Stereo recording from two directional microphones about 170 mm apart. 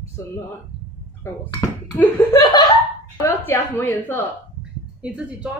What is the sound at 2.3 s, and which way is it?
Laughter, 25° left (ahead or behind).